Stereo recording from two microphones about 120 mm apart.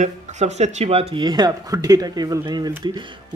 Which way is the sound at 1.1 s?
35° right (ahead or behind).